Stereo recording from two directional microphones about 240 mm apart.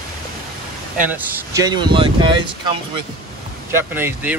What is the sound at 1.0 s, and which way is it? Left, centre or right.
Speech, centre.